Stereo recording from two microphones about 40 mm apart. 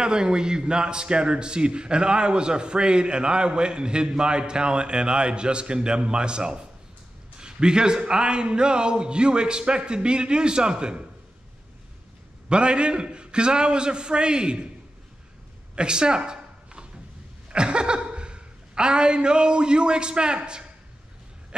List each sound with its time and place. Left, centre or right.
0.0 s a man's voice: right
12.4 s a man's voice: right
15.7 s a sound: right
17.5 s a woman's voice: right